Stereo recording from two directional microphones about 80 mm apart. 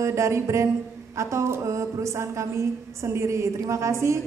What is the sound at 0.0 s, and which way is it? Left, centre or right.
A woman's voice, right.